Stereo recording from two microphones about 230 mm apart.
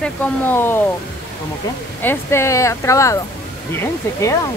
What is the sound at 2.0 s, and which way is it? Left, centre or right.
Speech, centre.